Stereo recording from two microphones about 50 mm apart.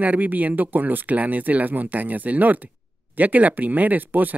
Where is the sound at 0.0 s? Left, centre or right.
Right.